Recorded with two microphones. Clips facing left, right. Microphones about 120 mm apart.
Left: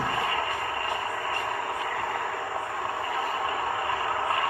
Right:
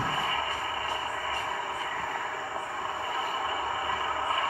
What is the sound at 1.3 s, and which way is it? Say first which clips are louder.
Vehicle: left 3 dB; 65° left (ahead or behind).